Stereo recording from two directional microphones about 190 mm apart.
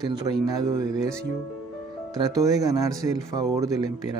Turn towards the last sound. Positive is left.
turn(degrees=-20)  # may be behind; listen again after turning